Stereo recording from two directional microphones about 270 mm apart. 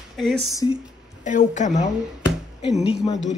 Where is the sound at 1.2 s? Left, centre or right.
Left.